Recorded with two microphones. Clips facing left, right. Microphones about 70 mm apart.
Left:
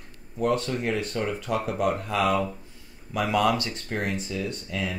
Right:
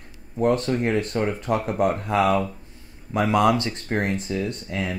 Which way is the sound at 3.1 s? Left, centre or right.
Right.